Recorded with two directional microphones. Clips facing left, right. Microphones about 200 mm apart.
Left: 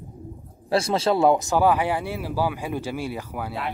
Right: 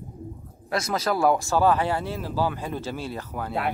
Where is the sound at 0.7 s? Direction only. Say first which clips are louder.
Left 4 dB; 30° left (ahead or behind); by 3.5 s 10° left (ahead or behind).